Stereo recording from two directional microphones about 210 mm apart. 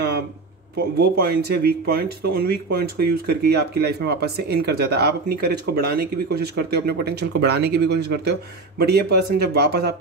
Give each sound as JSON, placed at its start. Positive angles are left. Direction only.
{"t": 0.9, "sound": "speech", "side_deg": -50}